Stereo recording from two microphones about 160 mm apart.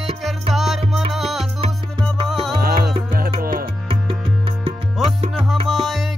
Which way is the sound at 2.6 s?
70° right (ahead or behind).